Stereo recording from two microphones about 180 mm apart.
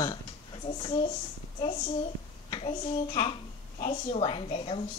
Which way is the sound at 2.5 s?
35° left (ahead or behind).